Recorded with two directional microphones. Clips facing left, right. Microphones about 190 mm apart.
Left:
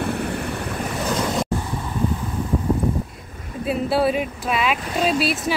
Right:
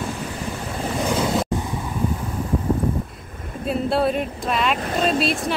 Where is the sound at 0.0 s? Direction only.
60° left (ahead or behind).